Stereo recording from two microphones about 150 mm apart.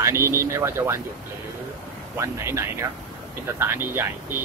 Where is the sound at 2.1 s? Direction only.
20° right (ahead or behind).